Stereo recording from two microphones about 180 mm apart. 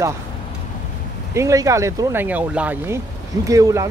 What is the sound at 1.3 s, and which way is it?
Speech, 15° right (ahead or behind).